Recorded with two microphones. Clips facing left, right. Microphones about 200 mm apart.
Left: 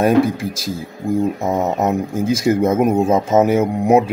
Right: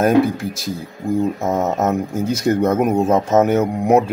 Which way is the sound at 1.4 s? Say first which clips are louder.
Even; centre (ahead or behind).